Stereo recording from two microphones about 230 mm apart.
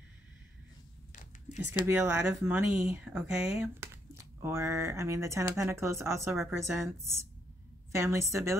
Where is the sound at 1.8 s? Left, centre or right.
Centre.